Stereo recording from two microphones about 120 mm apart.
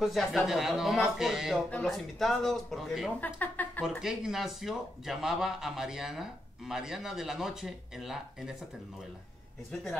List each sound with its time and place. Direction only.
0.0 s a man's voice: centre (ahead or behind)
3.2 s speech: 15° left (ahead or behind)
4.0 s a man's voice: 5° right (ahead or behind)